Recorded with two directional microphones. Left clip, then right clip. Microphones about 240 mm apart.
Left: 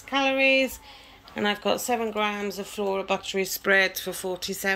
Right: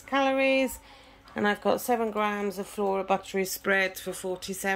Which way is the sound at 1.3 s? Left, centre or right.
Centre.